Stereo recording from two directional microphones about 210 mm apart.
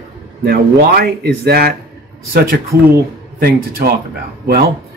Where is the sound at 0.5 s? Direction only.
45° right (ahead or behind).